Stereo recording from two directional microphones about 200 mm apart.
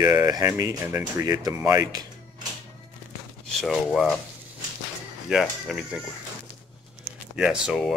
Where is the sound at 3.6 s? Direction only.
Centre (ahead or behind).